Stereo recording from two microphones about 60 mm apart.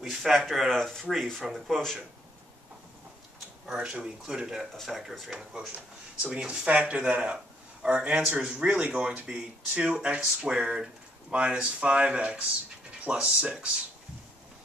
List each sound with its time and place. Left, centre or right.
0.0 s speech: centre
3.6 s speech: centre
5.3 s speech: centre